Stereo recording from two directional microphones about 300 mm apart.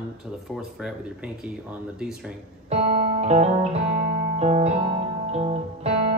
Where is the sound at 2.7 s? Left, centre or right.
Right.